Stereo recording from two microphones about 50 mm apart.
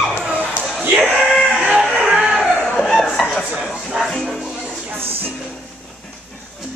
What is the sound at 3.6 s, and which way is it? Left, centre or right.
Music, centre.